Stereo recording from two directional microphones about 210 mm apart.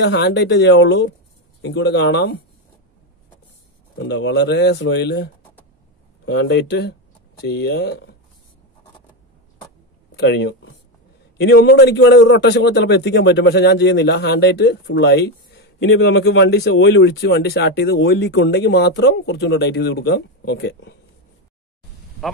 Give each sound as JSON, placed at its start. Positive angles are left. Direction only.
{"t": 0.0, "sound": "a man's voice", "side_deg": 55}
{"t": 4.0, "sound": "a man's voice", "side_deg": 55}
{"t": 10.1, "sound": "a man's voice", "side_deg": 55}
{"t": 22.2, "sound": "speech", "side_deg": 0}